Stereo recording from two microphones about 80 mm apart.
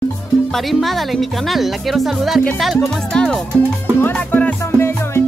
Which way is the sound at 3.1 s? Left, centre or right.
Centre.